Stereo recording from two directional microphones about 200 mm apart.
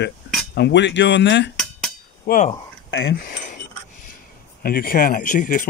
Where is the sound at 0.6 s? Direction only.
60° left (ahead or behind).